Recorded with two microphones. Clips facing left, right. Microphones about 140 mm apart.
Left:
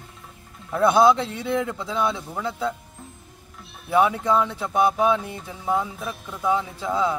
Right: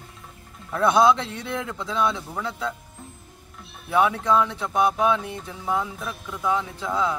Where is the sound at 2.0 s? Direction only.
5° left (ahead or behind).